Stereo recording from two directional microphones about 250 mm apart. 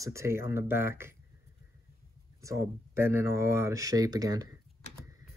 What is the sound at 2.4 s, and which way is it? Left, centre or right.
Speech, centre.